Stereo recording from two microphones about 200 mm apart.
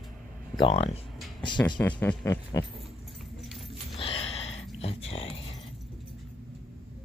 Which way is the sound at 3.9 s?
30° left (ahead or behind).